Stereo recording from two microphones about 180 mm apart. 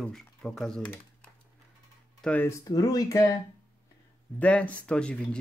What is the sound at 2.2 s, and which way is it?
Speech, 10° left (ahead or behind).